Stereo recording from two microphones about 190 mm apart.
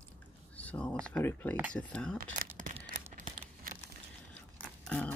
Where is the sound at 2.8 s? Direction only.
40° right (ahead or behind).